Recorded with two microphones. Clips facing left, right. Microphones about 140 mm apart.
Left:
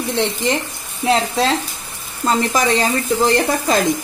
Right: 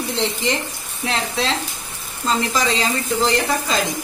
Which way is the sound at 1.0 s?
35° left (ahead or behind).